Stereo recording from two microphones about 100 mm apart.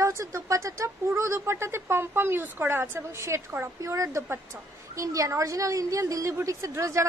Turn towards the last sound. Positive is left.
turn(degrees=-30)  # may be behind; listen again after turning